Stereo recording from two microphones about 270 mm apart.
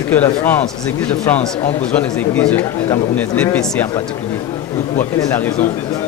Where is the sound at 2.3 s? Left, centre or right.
Centre.